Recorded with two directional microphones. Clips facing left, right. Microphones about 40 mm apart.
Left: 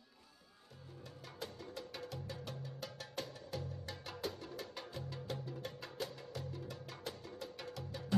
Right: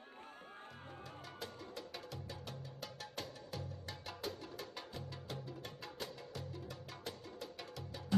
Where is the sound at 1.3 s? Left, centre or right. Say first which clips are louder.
Left 3 dB; centre.